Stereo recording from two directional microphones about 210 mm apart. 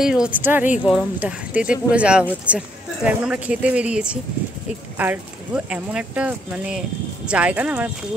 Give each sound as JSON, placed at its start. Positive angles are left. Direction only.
{"t": 0.0, "sound": "speech", "side_deg": -5}